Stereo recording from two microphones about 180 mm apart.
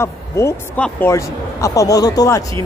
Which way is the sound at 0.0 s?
15° left (ahead or behind).